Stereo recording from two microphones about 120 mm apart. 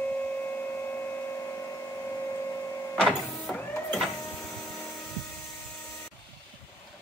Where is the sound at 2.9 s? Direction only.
Centre (ahead or behind).